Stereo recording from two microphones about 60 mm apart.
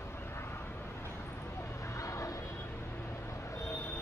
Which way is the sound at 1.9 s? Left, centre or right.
Left.